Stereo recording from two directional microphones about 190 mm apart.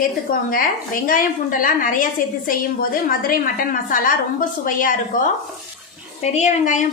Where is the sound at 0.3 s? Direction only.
50° left (ahead or behind).